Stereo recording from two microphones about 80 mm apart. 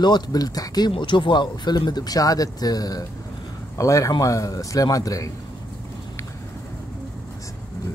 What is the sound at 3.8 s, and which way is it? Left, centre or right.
Speech, left.